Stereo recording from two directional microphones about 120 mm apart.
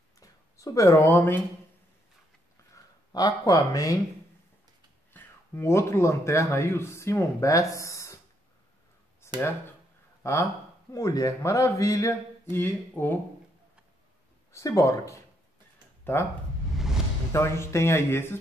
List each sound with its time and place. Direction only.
0.2 s speech: 30° left (ahead or behind)
2.7 s speech: 30° left (ahead or behind)
5.1 s speech: 20° left (ahead or behind)
9.2 s a sound: 20° left (ahead or behind)
10.9 s speech: 30° left (ahead or behind)
14.5 s speech: 25° left (ahead or behind)
16.7 s vehicle: 5° right (ahead or behind)
17.3 s speech: 20° left (ahead or behind)